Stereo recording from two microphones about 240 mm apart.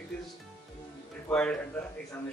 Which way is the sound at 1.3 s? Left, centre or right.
Centre.